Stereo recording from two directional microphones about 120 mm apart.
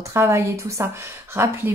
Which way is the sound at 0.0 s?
20° right (ahead or behind).